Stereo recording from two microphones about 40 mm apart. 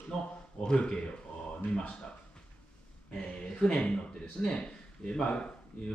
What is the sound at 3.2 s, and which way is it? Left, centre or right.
Speech, left.